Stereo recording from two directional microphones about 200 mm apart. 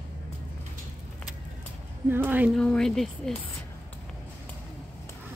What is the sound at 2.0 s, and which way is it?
Speech, 10° right (ahead or behind).